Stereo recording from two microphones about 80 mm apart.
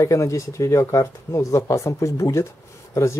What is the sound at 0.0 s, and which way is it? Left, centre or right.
Speech, left.